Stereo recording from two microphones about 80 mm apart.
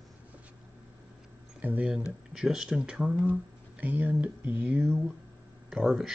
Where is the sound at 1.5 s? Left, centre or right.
Centre.